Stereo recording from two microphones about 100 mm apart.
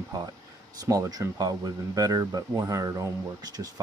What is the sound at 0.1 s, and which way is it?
Speech, 35° right (ahead or behind).